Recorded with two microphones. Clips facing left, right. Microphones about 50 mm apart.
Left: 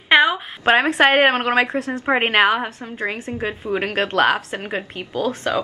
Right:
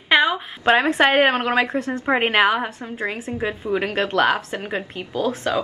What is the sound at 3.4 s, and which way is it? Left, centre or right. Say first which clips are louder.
A woman's voice: even; centre.